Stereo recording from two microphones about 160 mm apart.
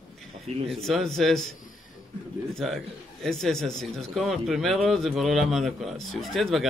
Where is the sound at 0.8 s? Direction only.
Centre (ahead or behind).